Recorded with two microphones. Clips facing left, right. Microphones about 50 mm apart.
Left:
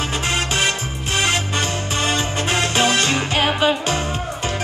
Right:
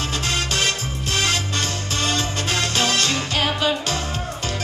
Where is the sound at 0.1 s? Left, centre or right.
Left.